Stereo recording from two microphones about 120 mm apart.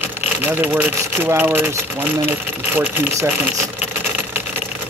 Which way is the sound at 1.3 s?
20° right (ahead or behind).